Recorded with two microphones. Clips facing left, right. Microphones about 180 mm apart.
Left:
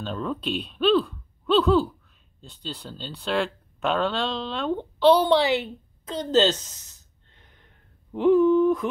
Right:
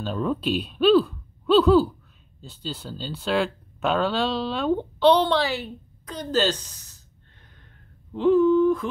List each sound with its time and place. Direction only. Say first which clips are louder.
0.0 s speech: right 4 dB; 5° right (ahead or behind); by 7.0 s 20° left (ahead or behind)
8.1 s humming: even; 20° left (ahead or behind)